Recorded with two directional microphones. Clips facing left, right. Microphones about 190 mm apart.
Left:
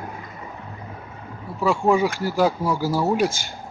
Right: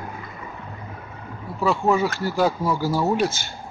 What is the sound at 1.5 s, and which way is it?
Speech, 10° left (ahead or behind).